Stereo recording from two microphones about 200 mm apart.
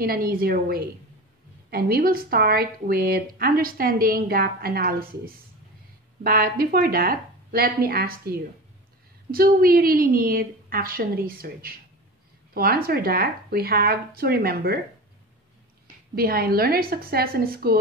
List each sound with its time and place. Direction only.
0.0 s speech: 50° right (ahead or behind)
16.2 s speech: 50° right (ahead or behind)